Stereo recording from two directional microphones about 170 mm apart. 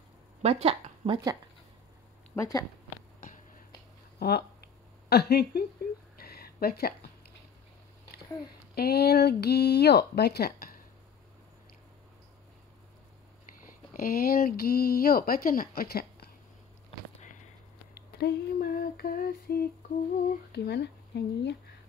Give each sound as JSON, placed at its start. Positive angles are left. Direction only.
{"t": 0.4, "sound": "speech", "side_deg": -35}
{"t": 2.3, "sound": "speech", "side_deg": 20}
{"t": 3.2, "sound": "a sound", "side_deg": 50}
{"t": 4.2, "sound": "a sound", "side_deg": 70}
{"t": 5.1, "sound": "speech", "side_deg": 75}
{"t": 6.1, "sound": "a sound", "side_deg": 65}
{"t": 8.7, "sound": "speech", "side_deg": 70}
{"t": 13.9, "sound": "speech", "side_deg": 60}
{"t": 18.1, "sound": "speech", "side_deg": 70}
{"t": 20.5, "sound": "speech", "side_deg": 80}